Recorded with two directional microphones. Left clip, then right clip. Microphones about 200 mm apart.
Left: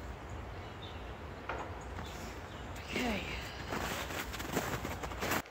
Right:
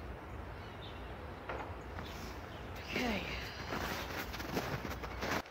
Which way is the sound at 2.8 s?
10° right (ahead or behind).